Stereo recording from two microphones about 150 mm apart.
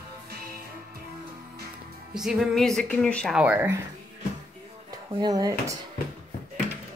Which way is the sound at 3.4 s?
15° right (ahead or behind).